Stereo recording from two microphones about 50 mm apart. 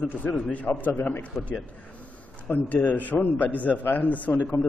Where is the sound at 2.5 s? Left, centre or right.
Left.